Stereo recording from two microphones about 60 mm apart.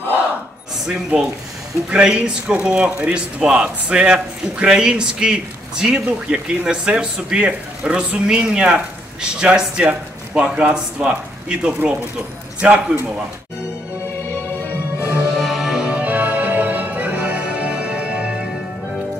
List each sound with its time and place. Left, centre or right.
0.7 s a man's voice: centre
15.3 s music: centre
15.6 s music: centre
15.9 s music: right